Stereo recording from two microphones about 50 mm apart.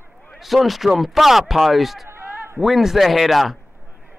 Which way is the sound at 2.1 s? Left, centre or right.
Right.